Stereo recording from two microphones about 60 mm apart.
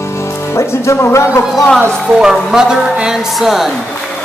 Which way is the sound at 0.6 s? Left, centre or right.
Left.